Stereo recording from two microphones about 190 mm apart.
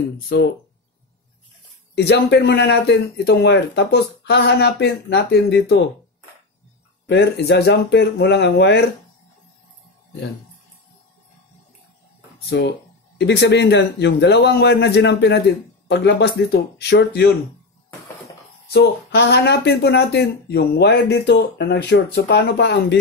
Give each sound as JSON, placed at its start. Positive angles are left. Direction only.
{"t": 0.3, "sound": "speech", "side_deg": 60}
{"t": 2.0, "sound": "speech", "side_deg": 60}
{"t": 7.1, "sound": "speech", "side_deg": 65}
{"t": 12.4, "sound": "speech", "side_deg": 65}
{"t": 18.7, "sound": "speech", "side_deg": 60}